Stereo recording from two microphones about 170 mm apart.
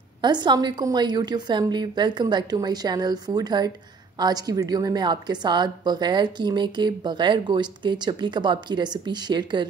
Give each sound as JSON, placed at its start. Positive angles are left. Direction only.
{"t": 0.2, "sound": "a woman's voice", "side_deg": -25}